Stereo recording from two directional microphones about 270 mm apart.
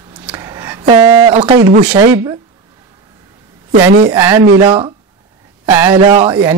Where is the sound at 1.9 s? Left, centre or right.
Centre.